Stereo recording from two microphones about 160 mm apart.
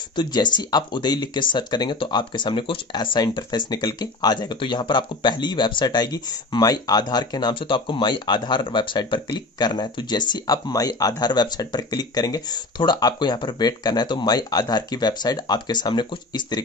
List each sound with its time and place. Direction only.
0.1 s speech: 25° left (ahead or behind)